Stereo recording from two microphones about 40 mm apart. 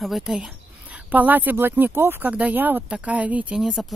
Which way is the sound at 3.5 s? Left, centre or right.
Centre.